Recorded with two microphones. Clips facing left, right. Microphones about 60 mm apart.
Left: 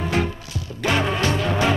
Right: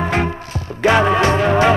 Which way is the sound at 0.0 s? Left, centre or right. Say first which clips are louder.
Right 4 dB; right.